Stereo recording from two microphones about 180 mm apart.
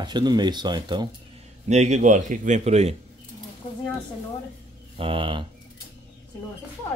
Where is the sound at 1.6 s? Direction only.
40° right (ahead or behind).